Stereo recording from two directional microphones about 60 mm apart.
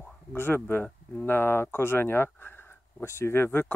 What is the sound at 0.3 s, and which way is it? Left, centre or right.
Speech, left.